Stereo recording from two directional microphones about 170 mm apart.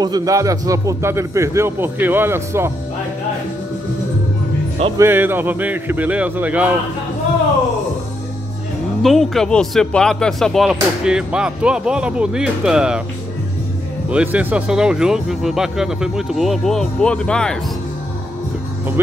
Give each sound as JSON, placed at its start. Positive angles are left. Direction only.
{"t": 0.0, "sound": "a man's voice", "side_deg": -20}
{"t": 4.9, "sound": "a man's voice", "side_deg": -15}
{"t": 9.0, "sound": "speech", "side_deg": 0}
{"t": 14.1, "sound": "speech", "side_deg": -10}